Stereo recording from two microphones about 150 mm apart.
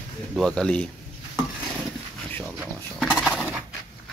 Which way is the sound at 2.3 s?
10° left (ahead or behind).